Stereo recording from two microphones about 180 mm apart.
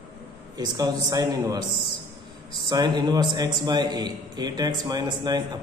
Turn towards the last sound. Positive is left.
turn(degrees=-25)  # may be behind; listen again after turning